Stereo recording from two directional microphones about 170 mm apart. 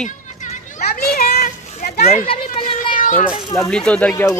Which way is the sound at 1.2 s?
60° left (ahead or behind).